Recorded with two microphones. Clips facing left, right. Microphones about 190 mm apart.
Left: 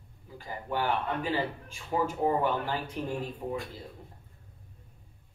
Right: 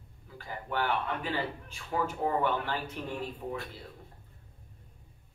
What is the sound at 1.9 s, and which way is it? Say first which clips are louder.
A man's voice: left 3 dB; 20° left (ahead or behind).